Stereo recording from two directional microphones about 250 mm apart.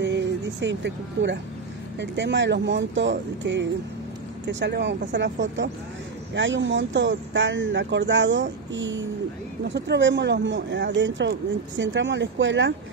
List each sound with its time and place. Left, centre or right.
0.0 s speech: right